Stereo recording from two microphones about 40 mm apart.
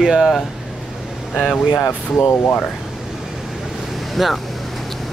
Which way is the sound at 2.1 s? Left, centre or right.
Left.